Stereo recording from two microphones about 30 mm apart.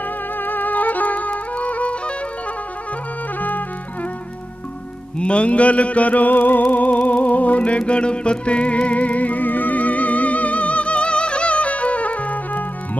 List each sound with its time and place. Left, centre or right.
0.4 s music: left
3.3 s music: left
5.2 s music: left
7.9 s music: left